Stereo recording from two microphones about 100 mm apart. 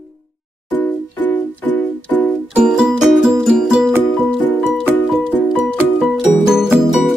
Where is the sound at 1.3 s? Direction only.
15° left (ahead or behind).